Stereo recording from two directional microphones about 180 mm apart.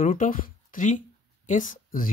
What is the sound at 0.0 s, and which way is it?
Speech, 50° left (ahead or behind).